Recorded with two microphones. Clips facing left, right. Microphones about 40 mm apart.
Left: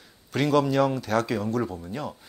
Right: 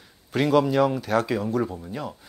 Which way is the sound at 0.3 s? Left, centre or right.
Centre.